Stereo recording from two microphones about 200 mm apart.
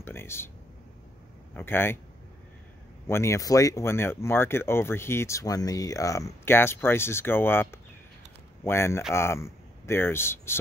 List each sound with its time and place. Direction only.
0.0 s speech: 10° left (ahead or behind)
1.5 s speech: 10° left (ahead or behind)
3.1 s speech: 15° left (ahead or behind)